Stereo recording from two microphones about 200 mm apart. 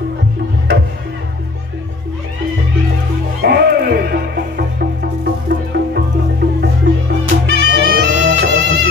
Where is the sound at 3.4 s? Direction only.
55° right (ahead or behind).